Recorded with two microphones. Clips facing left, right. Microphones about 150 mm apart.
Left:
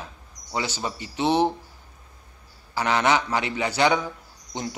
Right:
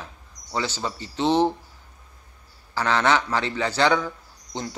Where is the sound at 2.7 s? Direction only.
15° left (ahead or behind).